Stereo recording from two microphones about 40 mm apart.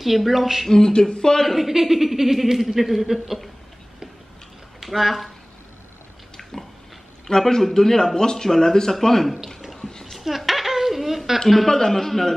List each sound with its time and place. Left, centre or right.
0.0 s speech: centre
0.7 s speech: centre
1.4 s speech: centre
4.7 s speech: centre
7.2 s speech: centre
9.8 s a sound: centre
10.0 s a sound: centre
11.3 s speech: centre